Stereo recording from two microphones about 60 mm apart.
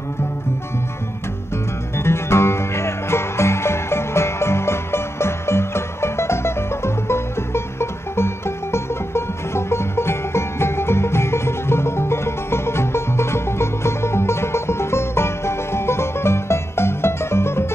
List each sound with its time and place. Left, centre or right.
2.0 s music: left